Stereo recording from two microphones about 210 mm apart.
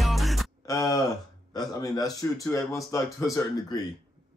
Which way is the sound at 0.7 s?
15° left (ahead or behind).